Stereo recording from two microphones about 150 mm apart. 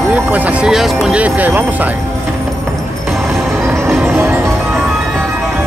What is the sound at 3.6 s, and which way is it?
Music, 15° right (ahead or behind).